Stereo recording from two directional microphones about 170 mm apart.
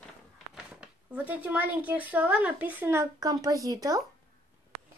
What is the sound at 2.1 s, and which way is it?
A woman's voice, 10° right (ahead or behind).